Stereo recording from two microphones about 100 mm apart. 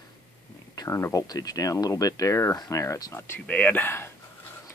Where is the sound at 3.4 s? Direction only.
15° left (ahead or behind).